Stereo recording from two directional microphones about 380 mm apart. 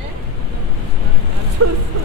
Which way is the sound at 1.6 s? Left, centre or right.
Right.